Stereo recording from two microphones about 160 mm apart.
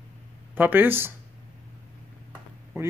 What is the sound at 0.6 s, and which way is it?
Speech, 10° right (ahead or behind).